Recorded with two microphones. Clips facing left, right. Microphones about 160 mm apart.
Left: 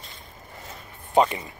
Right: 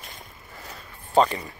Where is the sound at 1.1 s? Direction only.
15° left (ahead or behind).